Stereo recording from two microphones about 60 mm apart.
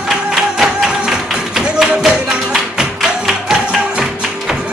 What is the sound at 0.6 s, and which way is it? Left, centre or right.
Music, centre.